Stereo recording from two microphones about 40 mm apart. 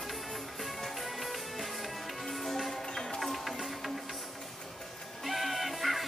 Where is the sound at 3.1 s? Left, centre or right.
Centre.